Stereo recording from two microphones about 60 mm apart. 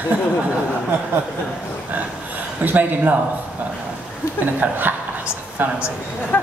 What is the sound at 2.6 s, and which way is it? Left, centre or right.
Speech, right.